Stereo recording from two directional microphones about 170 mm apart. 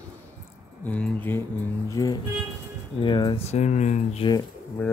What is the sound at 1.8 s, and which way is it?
Speech, 20° left (ahead or behind).